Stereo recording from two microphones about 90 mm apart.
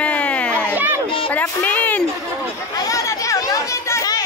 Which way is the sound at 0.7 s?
20° right (ahead or behind).